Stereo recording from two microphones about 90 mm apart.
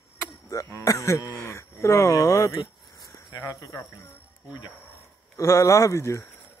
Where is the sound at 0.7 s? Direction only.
35° left (ahead or behind).